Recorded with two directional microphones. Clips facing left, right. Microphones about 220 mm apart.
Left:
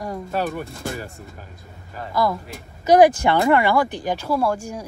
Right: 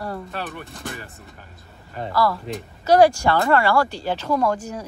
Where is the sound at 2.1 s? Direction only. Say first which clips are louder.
Even; 20° left (ahead or behind).